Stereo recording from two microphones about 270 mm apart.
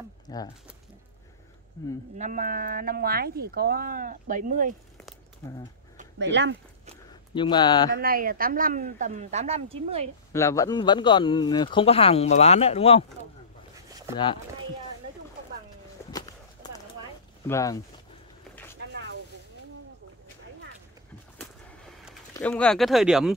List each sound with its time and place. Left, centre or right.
0.3 s a sound: centre
1.8 s speech: centre
2.1 s speech: right
6.1 s speech: right
7.3 s speech: centre
7.9 s speech: right
10.3 s speech: centre
14.1 s speech: centre
17.5 s speech: centre
18.5 s vehicle: centre
18.8 s a sound: right
22.3 s speech: centre